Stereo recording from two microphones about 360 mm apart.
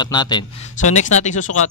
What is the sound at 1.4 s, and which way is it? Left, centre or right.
Speech, left.